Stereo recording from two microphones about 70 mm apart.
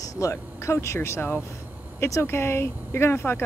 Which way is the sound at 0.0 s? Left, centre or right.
Left.